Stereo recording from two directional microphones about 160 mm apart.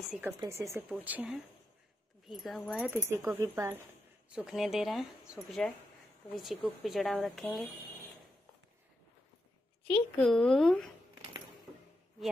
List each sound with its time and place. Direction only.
0.1 s speech: 15° right (ahead or behind); by 2.9 s 5° left (ahead or behind)
2.9 s speech: 15° right (ahead or behind)
4.3 s speech: centre (ahead or behind)
9.8 s speech: 5° left (ahead or behind)